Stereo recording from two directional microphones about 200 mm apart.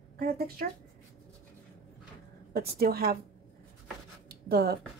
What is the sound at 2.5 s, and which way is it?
Speech, 50° right (ahead or behind).